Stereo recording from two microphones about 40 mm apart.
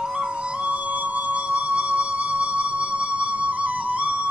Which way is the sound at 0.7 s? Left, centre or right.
Right.